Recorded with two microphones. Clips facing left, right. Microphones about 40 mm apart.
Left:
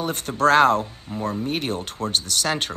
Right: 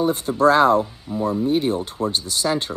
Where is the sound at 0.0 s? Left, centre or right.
Left.